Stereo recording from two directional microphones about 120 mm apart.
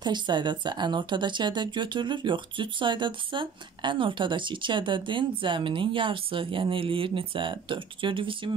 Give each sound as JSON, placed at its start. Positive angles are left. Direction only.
{"t": 0.0, "sound": "speech", "side_deg": -40}